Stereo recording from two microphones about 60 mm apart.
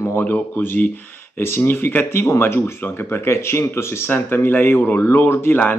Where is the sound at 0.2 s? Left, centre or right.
Left.